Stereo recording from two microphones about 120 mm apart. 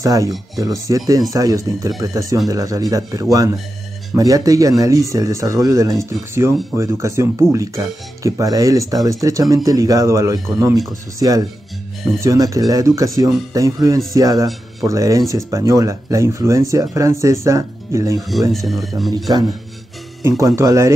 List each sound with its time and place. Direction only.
0.0 s speech: 25° right (ahead or behind)
18.5 s speech: centre (ahead or behind)
20.2 s speech: 25° right (ahead or behind)